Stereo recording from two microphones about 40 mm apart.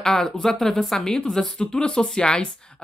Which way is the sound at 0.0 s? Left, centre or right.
Centre.